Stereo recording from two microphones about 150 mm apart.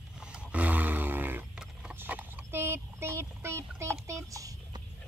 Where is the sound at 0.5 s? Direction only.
10° right (ahead or behind).